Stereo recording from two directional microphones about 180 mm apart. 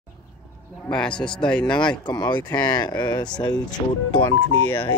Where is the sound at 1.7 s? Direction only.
25° left (ahead or behind).